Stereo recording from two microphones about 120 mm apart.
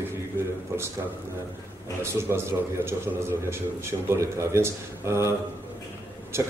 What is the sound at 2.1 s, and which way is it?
A man's voice, 20° right (ahead or behind).